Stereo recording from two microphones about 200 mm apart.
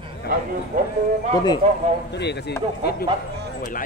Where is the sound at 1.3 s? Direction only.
20° left (ahead or behind).